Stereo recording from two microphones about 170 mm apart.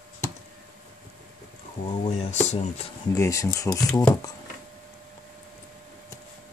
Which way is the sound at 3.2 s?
20° left (ahead or behind).